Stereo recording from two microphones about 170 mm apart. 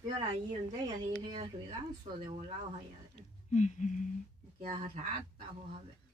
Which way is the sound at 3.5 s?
45° left (ahead or behind).